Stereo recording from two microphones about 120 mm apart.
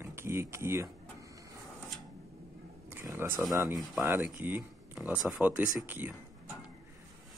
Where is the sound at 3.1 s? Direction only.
20° right (ahead or behind).